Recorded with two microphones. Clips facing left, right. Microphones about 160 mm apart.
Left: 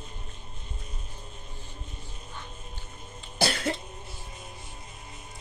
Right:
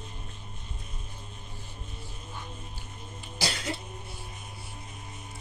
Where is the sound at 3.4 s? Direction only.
55° left (ahead or behind).